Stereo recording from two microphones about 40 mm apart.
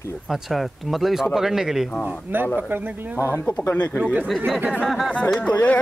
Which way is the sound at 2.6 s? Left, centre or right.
Right.